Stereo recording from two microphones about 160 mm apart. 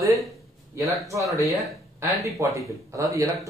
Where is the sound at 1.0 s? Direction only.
20° right (ahead or behind).